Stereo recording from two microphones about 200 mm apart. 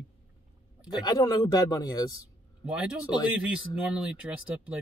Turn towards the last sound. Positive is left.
turn(degrees=-5)  # may be behind; listen again after turning